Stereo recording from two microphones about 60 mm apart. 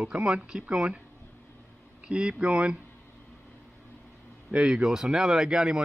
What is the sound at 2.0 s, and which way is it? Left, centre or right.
Speech, centre.